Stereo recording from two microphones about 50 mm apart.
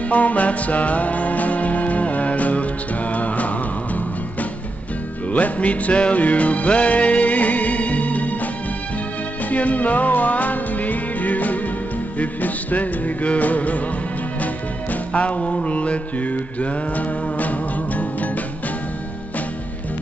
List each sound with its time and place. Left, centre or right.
0.1 s music: left
9.5 s music: left